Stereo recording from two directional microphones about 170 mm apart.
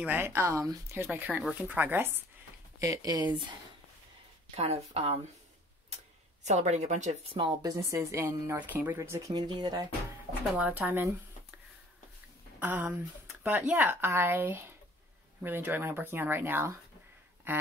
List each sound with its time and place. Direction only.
0.0 s a woman's voice: 10° right (ahead or behind)
4.6 s speech: 35° right (ahead or behind)
6.4 s a woman's voice: 40° right (ahead or behind); by 9.8 s 25° right (ahead or behind)
10.4 s speech: 5° right (ahead or behind)
12.5 s speech: 10° right (ahead or behind)